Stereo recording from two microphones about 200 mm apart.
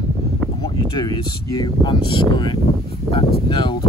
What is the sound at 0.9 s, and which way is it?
Speech, 20° left (ahead or behind).